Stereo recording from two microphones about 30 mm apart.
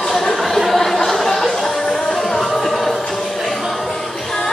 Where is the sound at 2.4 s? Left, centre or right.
Centre.